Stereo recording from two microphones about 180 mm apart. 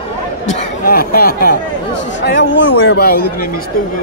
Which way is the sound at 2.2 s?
80° left.